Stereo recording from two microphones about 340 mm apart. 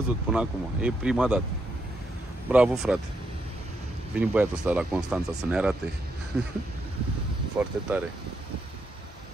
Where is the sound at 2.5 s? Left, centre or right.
Centre.